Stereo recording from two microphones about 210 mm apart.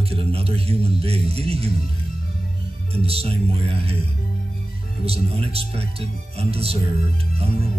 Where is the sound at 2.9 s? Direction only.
30° right (ahead or behind).